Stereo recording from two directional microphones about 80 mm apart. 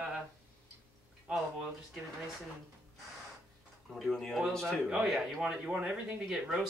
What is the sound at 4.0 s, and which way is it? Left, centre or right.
Speech, centre.